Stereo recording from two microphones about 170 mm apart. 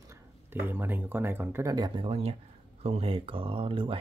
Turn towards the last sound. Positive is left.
turn(degrees=-30)  # may be behind; listen again after turning